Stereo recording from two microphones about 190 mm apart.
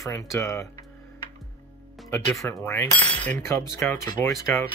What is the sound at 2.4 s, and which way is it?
Speech, 15° left (ahead or behind).